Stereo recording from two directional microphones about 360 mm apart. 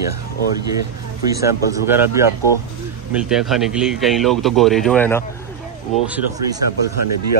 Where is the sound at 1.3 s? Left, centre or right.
Centre.